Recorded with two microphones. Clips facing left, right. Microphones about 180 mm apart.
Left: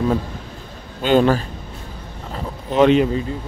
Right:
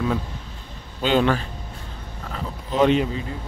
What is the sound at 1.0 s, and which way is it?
Speech, 40° left (ahead or behind).